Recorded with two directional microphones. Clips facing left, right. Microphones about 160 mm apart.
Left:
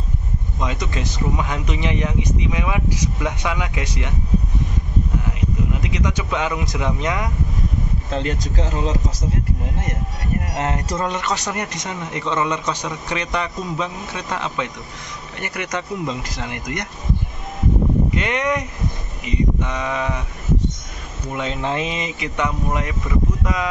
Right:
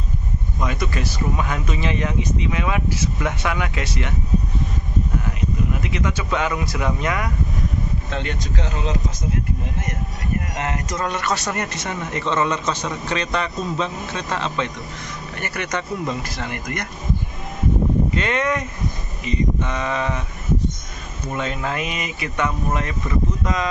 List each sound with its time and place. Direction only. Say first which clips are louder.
0.6 s speech: right 1 dB; 20° left (ahead or behind)
5.8 s speech: left 1 dB; 15° left (ahead or behind)
8.1 s speech: left 3 dB; 35° left (ahead or behind)
10.5 s speech: left 3 dB; 35° left (ahead or behind)
11.1 s speech: even; 15° left (ahead or behind)
18.1 s speech: even; 15° left (ahead or behind)
21.4 s speech: left 2 dB; 20° left (ahead or behind)